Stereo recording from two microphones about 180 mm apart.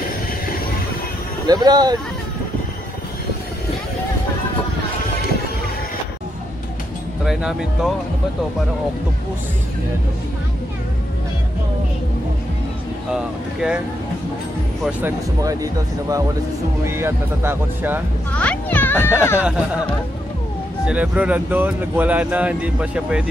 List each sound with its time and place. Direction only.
1.5 s speech: 20° right (ahead or behind)
7.2 s speech: centre (ahead or behind)
13.1 s speech: 5° right (ahead or behind)
14.8 s speech: 10° right (ahead or behind)
18.4 s speech: 10° left (ahead or behind)
20.8 s speech: 5° right (ahead or behind)